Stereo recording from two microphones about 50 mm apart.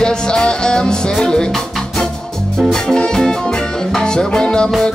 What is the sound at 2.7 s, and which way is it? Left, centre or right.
Music, centre.